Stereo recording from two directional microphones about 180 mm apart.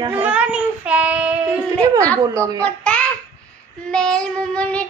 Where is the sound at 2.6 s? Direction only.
5° left (ahead or behind).